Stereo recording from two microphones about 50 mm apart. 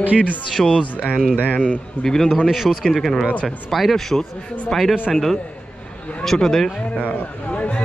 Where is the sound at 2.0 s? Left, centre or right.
Centre.